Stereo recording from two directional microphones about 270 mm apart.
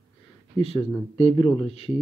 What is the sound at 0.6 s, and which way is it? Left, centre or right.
Speech, left.